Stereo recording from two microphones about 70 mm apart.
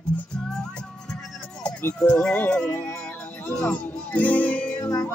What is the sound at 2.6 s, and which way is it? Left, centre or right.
Speech, left.